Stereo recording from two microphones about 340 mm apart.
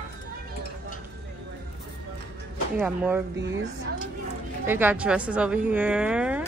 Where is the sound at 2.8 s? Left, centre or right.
Centre.